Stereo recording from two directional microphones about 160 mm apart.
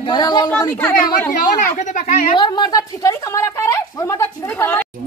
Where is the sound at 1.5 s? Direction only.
50° left (ahead or behind).